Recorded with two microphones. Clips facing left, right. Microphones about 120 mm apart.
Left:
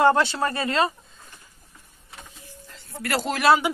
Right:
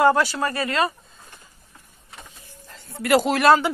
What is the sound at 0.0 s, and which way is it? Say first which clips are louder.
Speech: right 1 dB; 25° left (ahead or behind).